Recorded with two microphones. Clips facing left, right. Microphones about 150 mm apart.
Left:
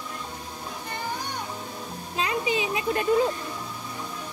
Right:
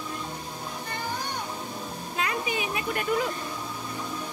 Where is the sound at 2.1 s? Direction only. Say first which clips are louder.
Left 4 dB; 25° left (ahead or behind).